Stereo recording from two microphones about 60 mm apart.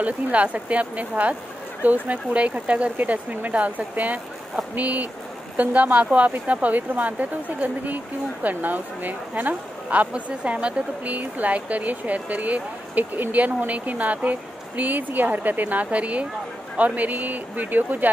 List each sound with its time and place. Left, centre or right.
0.0 s speech: right